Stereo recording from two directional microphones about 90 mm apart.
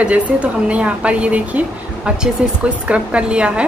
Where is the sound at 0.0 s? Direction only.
15° right (ahead or behind).